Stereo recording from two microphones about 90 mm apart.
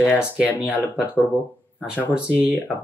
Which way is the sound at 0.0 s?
10° right (ahead or behind).